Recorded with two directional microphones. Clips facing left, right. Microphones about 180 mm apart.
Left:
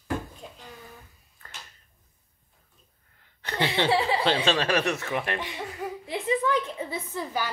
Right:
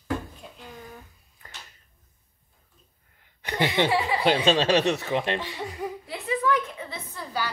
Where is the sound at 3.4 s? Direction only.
15° right (ahead or behind).